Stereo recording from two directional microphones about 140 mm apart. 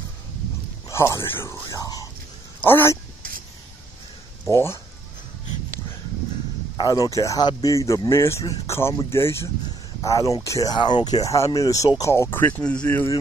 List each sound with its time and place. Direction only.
0.8 s speech: 20° left (ahead or behind)
4.5 s speech: 20° left (ahead or behind)
6.8 s speech: 25° left (ahead or behind)